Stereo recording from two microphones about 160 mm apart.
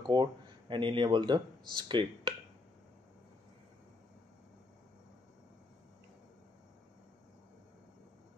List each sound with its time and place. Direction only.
0.0 s speech: 30° right (ahead or behind)